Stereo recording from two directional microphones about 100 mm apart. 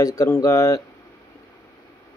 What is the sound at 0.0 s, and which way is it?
Speech, 30° left (ahead or behind).